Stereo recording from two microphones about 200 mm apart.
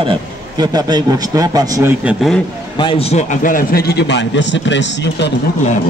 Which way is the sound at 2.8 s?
25° left (ahead or behind).